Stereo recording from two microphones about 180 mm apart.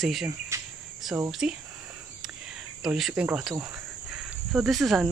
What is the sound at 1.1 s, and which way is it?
Speech, 10° right (ahead or behind).